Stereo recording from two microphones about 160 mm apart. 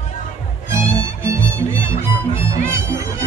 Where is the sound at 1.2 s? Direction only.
15° right (ahead or behind).